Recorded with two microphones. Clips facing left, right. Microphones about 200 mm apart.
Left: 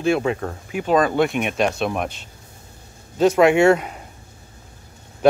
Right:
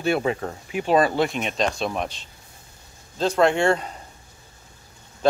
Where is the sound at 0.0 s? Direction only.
Centre (ahead or behind).